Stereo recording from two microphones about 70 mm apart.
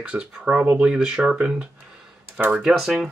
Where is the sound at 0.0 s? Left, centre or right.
Centre.